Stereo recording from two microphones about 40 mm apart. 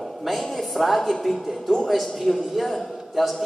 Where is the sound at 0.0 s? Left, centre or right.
Centre.